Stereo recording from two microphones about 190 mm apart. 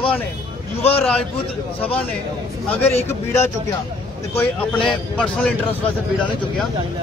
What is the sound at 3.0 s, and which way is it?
Speech, 15° left (ahead or behind).